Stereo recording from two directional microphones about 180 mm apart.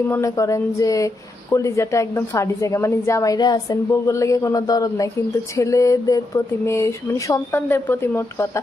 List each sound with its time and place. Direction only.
0.1 s speech: 15° left (ahead or behind)